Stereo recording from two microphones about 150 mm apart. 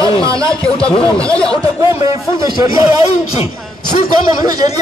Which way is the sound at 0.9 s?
35° left (ahead or behind).